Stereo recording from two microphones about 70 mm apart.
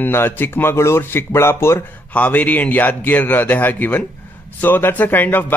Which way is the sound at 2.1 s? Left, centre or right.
Left.